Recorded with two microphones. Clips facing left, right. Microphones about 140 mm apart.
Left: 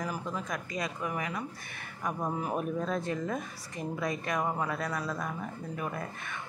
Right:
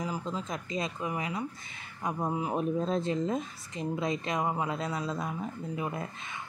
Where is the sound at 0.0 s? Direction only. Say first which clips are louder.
Right 1 dB; 20° right (ahead or behind).